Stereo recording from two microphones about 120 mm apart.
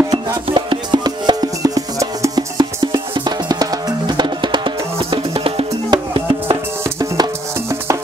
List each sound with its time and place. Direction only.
0.1 s music: 40° right (ahead or behind)
6.8 s music: 30° right (ahead or behind)